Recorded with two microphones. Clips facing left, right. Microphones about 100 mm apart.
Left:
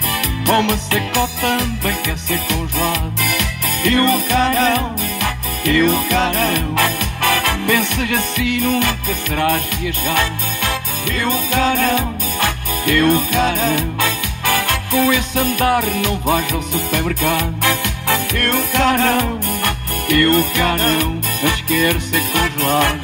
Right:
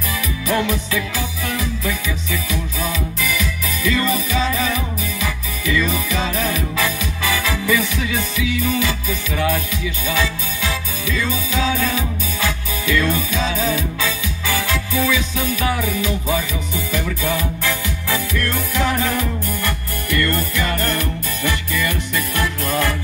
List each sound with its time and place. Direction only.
0.1 s music: 70° left (ahead or behind)
10.0 s music: 60° left (ahead or behind)